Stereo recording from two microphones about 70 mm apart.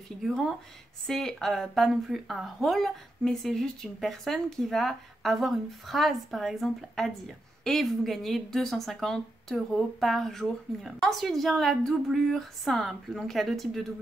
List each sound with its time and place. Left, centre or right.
0.2 s a woman's voice: centre